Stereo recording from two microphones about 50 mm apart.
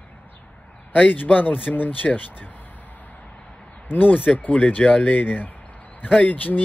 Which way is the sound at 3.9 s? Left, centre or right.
Left.